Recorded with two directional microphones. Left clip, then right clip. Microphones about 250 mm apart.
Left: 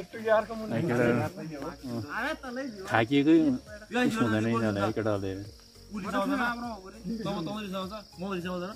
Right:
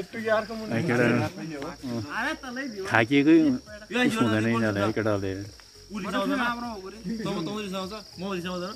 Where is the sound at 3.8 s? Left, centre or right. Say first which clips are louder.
Right 4 dB; left.